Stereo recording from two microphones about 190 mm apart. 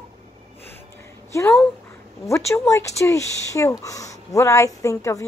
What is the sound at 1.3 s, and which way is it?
Speech, 15° left (ahead or behind).